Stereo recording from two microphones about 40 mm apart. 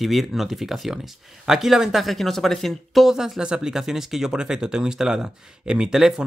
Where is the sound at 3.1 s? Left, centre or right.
Centre.